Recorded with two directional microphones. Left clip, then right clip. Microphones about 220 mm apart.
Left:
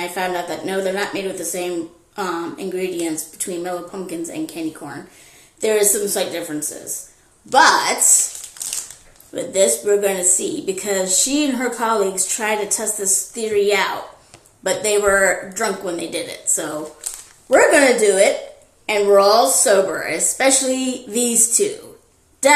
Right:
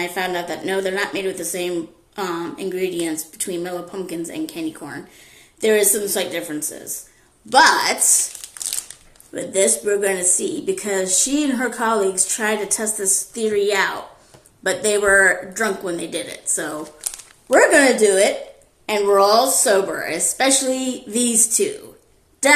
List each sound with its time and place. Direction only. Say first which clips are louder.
0.0 s a woman's voice: left 1 dB; 15° right (ahead or behind)
9.3 s a woman's voice: left 2 dB; 15° right (ahead or behind)
16.5 s speech: even; 30° right (ahead or behind)
17.7 s a woman's voice: left 1 dB; 20° right (ahead or behind)